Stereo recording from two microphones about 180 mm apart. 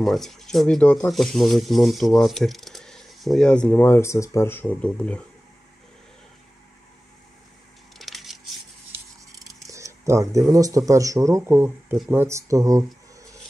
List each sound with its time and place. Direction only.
0.0 s speech: centre (ahead or behind)
8.0 s coin: centre (ahead or behind)
9.7 s speech: 15° right (ahead or behind)